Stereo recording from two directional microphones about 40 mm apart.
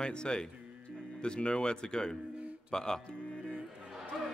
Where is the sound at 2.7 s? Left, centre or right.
Centre.